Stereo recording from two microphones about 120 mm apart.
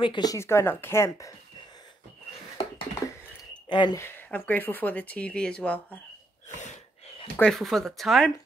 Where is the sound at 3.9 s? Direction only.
20° left (ahead or behind).